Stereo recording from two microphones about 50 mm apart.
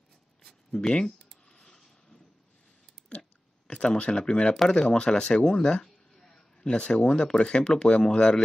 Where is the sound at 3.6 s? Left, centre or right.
Left.